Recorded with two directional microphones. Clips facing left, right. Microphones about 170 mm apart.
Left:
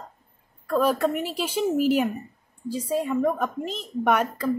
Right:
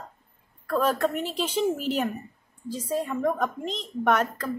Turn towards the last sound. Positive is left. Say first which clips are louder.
# left 1 dB
turn(degrees=10)  # may be behind; listen again after turning